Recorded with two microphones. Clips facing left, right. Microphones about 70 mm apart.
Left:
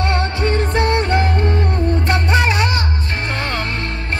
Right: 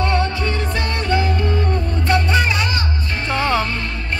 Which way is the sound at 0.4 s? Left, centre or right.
Left.